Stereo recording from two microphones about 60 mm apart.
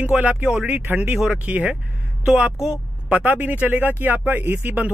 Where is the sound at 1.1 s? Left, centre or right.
Centre.